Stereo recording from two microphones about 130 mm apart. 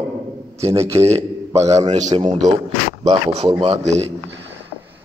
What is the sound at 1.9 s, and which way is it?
Speech, 60° right (ahead or behind).